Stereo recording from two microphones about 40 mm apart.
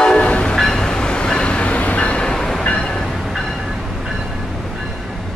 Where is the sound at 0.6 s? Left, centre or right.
Centre; by 2.2 s left.